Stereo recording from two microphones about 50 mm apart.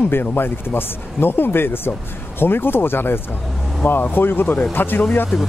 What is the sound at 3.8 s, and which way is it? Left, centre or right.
Speech, left.